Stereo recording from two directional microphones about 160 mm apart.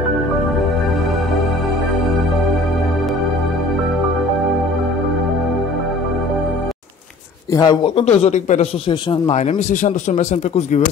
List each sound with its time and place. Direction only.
7.5 s speech: 25° left (ahead or behind); by 10.8 s 50° left (ahead or behind)